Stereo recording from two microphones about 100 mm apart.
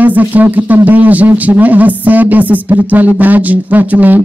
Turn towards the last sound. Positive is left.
turn(degrees=-15)  # may be behind; listen again after turning